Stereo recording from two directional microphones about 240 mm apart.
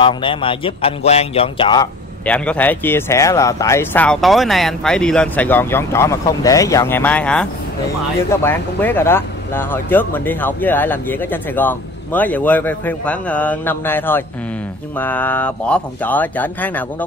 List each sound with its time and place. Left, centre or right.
0.0 s speech: left
2.2 s speech: centre